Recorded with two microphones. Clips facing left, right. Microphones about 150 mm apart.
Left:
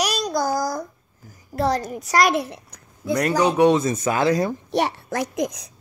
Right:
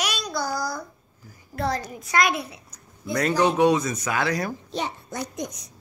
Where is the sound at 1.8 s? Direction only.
45° left (ahead or behind).